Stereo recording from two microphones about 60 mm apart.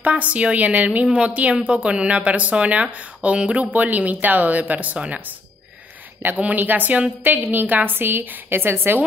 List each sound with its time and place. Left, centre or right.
0.0 s a woman's voice: right
6.2 s a woman's voice: right